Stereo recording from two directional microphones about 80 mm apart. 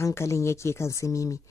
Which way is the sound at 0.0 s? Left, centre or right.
Left.